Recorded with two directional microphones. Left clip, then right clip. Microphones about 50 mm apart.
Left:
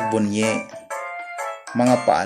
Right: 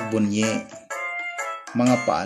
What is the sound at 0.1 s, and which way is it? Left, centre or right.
Speech, right.